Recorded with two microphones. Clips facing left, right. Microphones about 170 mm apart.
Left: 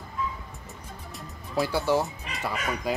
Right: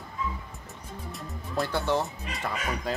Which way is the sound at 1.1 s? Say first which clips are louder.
Left 2 dB; 5° left (ahead or behind).